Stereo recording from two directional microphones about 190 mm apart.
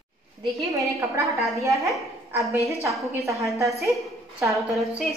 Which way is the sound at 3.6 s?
Centre (ahead or behind).